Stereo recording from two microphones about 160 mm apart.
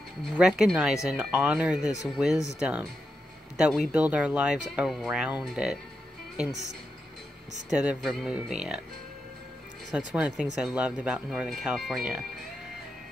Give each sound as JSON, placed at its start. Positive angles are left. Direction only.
{"t": 0.2, "sound": "speech", "side_deg": 0}
{"t": 7.7, "sound": "speech", "side_deg": -5}
{"t": 9.9, "sound": "speech", "side_deg": -5}